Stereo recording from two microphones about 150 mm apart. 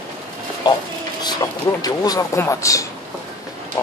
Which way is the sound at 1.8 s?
25° left (ahead or behind).